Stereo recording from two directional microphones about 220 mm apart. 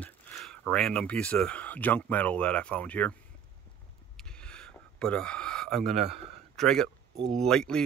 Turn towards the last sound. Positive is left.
turn(degrees=5)  # may be behind; listen again after turning